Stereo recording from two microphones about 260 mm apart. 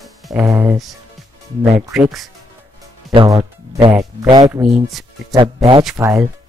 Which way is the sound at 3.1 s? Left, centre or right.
Centre.